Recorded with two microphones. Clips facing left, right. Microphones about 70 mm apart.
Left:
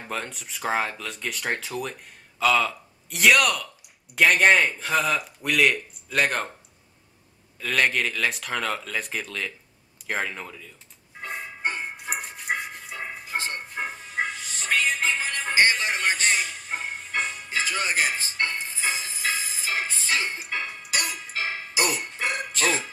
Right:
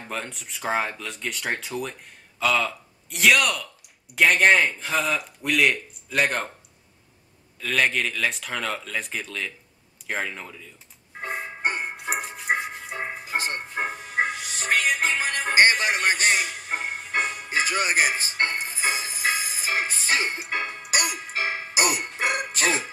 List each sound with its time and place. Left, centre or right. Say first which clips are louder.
0.0 s speech: left 1 dB; centre
7.6 s speech: even; centre
11.4 s music: right 1 dB; centre
12.0 s music: right 3 dB; centre